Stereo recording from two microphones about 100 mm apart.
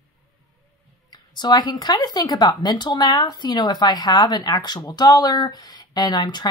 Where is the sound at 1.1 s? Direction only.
50° left (ahead or behind).